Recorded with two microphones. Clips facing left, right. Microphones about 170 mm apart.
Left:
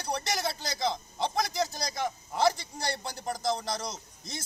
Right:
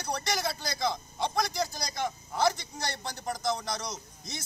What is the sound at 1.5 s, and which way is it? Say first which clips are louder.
Speech: left 2 dB; centre (ahead or behind).